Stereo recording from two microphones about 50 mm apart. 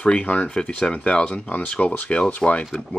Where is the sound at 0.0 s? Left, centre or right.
Left.